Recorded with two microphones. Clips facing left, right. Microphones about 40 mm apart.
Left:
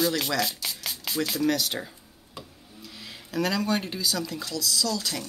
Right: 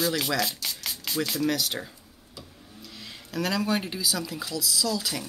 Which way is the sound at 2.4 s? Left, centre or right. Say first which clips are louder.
Left 3 dB; left.